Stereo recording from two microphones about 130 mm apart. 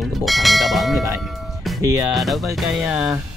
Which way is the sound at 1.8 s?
25° right (ahead or behind).